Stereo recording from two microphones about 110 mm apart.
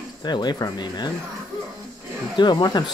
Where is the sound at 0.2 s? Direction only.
40° left (ahead or behind).